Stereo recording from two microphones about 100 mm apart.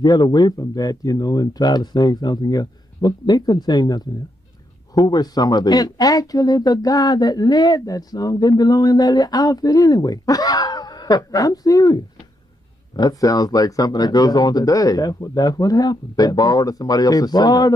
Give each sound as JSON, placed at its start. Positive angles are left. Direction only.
{"t": 0.0, "sound": "speech", "side_deg": 45}